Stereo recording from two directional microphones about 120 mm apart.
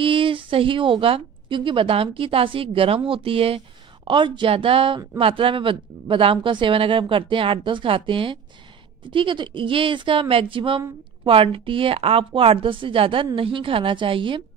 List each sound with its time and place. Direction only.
0.0 s speech: 45° right (ahead or behind)